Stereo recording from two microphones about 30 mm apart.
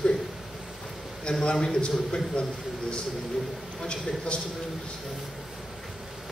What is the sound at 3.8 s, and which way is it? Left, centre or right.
Speech, left.